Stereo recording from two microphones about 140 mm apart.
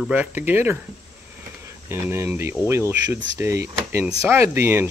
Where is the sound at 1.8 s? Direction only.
15° right (ahead or behind).